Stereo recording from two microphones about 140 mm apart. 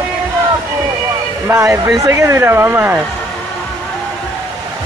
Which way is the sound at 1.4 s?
20° right (ahead or behind).